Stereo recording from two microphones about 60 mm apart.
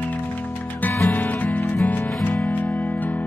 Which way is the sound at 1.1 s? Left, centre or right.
Left.